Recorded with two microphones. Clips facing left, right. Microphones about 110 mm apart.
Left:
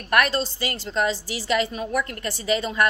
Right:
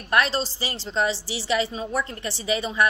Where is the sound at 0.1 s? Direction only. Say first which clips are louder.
Left 1 dB; 25° right (ahead or behind).